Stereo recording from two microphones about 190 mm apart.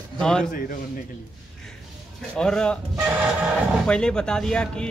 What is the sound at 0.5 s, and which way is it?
Speech, 45° left (ahead or behind).